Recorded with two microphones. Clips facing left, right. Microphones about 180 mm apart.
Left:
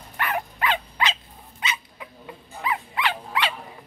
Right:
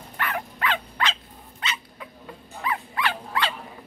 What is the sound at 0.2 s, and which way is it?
Dog, 15° left (ahead or behind).